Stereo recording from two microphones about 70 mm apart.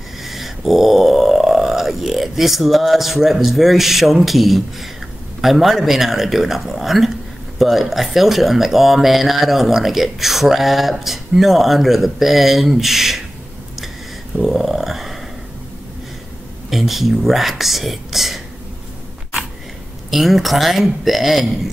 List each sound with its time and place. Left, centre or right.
0.2 s a sound: centre
5.4 s speech: centre
14.4 s speech: centre
16.7 s speech: centre
20.1 s speech: centre